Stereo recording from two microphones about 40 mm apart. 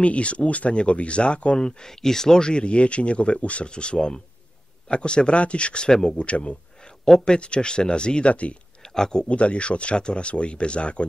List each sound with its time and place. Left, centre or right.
0.0 s speech: left
8.8 s speech: centre
9.3 s speech: left